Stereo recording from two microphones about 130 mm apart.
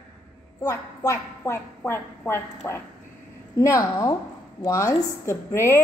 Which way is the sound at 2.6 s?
20° left (ahead or behind).